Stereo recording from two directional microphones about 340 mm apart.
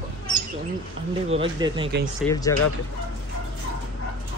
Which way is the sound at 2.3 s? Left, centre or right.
Centre.